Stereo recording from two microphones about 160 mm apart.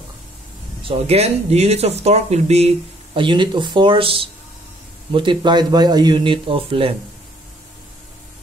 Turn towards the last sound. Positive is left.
turn(degrees=-35)  # may be behind; listen again after turning